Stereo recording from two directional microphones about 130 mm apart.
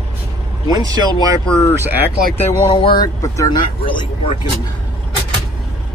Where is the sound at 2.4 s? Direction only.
45° left (ahead or behind).